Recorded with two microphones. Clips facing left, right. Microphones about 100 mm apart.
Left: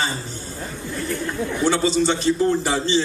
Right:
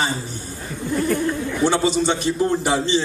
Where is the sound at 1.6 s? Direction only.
20° right (ahead or behind).